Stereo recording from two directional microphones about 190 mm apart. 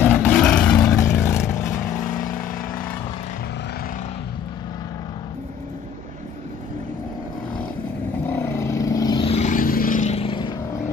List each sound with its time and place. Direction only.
0.0 s vehicle: 5° left (ahead or behind)
8.2 s vehicle: 10° left (ahead or behind)